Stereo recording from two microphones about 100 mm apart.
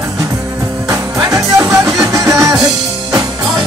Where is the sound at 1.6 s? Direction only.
25° right (ahead or behind).